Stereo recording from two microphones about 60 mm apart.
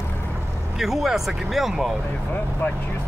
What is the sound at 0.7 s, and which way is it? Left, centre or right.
Speech, centre.